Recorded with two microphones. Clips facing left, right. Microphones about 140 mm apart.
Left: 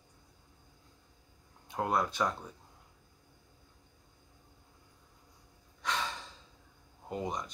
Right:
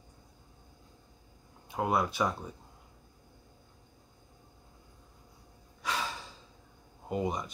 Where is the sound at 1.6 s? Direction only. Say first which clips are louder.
Right 2 dB; 5° right (ahead or behind).